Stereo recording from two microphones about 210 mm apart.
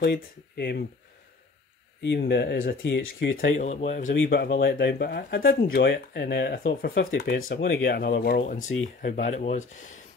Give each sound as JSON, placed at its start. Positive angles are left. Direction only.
{"t": 0.0, "sound": "speech", "side_deg": 50}
{"t": 2.0, "sound": "speech", "side_deg": 55}
{"t": 2.8, "sound": "speech", "side_deg": 65}
{"t": 3.2, "sound": "speech", "side_deg": 50}
{"t": 3.6, "sound": "speech", "side_deg": 35}
{"t": 4.1, "sound": "speech", "side_deg": 50}
{"t": 8.6, "sound": "speech", "side_deg": 75}
{"t": 9.0, "sound": "speech", "side_deg": 35}